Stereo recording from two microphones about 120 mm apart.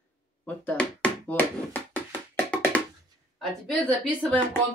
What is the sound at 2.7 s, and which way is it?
Music, 10° left (ahead or behind).